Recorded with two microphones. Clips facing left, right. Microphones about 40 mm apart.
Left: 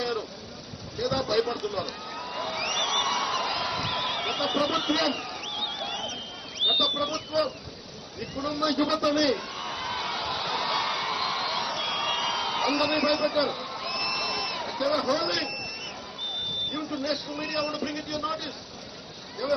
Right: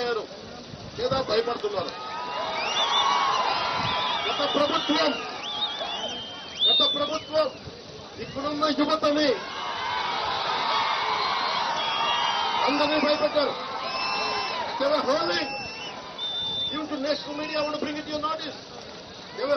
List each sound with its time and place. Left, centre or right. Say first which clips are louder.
0.9 s a man's voice: right 1 dB; centre
1.7 s a sound: right 3 dB; centre
6.6 s a man's voice: right 2 dB; centre
8.2 s a sound: right 2 dB; centre
15.0 s a man's voice: right 2 dB; centre
16.7 s a man's voice: right 3 dB; centre